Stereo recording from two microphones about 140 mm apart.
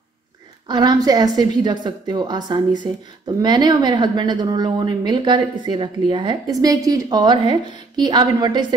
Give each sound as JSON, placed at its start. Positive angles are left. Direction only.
{"t": 0.7, "sound": "a woman's voice", "side_deg": -30}